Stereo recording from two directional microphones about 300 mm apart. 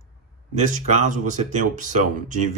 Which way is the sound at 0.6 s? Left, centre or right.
Right.